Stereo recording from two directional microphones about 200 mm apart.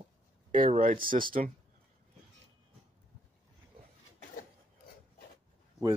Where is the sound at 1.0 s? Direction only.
45° right (ahead or behind).